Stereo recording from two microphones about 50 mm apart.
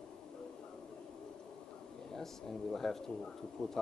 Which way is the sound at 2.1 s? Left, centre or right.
Centre.